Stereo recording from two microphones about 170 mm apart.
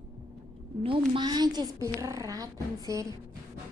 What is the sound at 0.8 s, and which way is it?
A woman's voice, 25° right (ahead or behind).